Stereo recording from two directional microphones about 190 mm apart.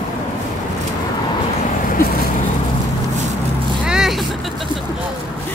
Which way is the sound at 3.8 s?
5° right (ahead or behind).